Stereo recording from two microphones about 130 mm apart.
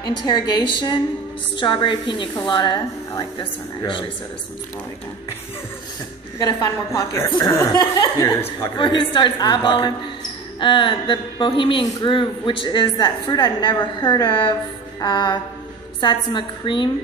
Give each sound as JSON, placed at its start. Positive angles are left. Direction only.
{"t": 0.0, "sound": "a woman's voice", "side_deg": 35}
{"t": 6.4, "sound": "a woman's voice", "side_deg": 30}
{"t": 8.7, "sound": "a woman's voice", "side_deg": 40}